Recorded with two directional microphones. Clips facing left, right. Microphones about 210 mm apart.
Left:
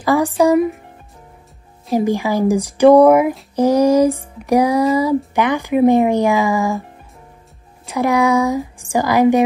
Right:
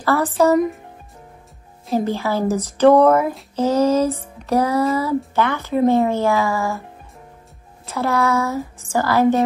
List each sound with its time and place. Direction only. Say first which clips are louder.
0.0 s speech: left 2 dB; 15° left (ahead or behind)
2.0 s speech: left 4 dB; 15° left (ahead or behind)
7.9 s speech: left 4 dB; 15° left (ahead or behind)